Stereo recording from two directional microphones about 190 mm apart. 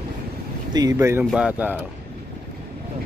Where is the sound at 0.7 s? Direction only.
20° right (ahead or behind).